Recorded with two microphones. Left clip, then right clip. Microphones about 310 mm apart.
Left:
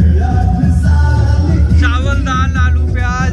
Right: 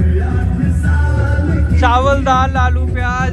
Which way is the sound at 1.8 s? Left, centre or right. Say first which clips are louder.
Right 8 dB; centre.